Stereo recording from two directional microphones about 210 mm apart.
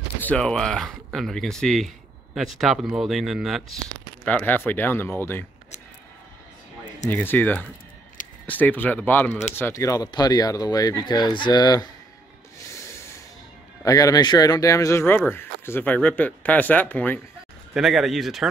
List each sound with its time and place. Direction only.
0.2 s speech: 5° left (ahead or behind)
7.1 s speech: 10° left (ahead or behind)
12.6 s snort: 15° left (ahead or behind)
13.8 s speech: 15° left (ahead or behind); by 18.5 s centre (ahead or behind)